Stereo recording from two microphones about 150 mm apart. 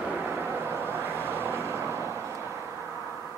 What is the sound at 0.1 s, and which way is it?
Vehicle, 15° right (ahead or behind).